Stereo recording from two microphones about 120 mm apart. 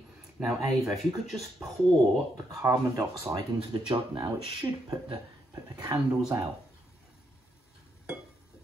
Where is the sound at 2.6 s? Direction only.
25° right (ahead or behind).